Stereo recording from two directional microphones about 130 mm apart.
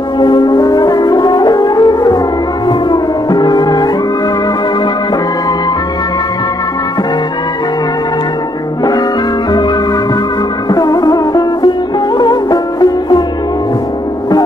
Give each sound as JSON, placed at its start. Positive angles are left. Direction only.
{"t": 0.2, "sound": "brass instrument", "side_deg": 35}
{"t": 2.9, "sound": "music", "side_deg": 35}
{"t": 10.7, "sound": "music", "side_deg": 30}